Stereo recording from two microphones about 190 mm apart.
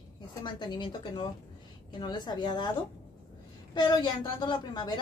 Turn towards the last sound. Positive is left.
turn(degrees=25)  # may be behind; listen again after turning